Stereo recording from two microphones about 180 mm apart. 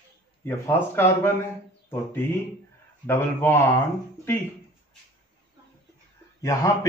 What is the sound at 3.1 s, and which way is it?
Speech, 15° left (ahead or behind).